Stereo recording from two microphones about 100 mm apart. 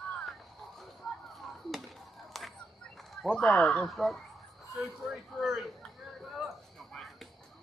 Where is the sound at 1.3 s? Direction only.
Centre (ahead or behind).